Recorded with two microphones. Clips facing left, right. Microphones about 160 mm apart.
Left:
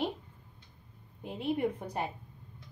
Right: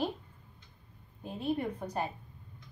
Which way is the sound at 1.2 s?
20° left (ahead or behind).